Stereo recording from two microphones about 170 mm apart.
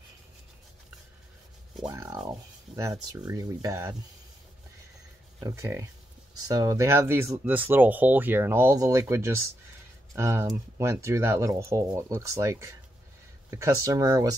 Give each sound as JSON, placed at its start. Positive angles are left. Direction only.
{"t": 2.2, "sound": "speech", "side_deg": -20}
{"t": 5.4, "sound": "speech", "side_deg": -15}